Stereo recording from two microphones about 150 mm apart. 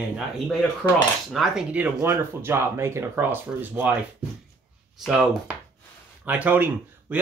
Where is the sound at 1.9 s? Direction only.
15° right (ahead or behind).